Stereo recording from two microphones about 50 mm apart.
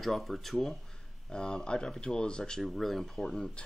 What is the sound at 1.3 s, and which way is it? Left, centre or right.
Speech, centre.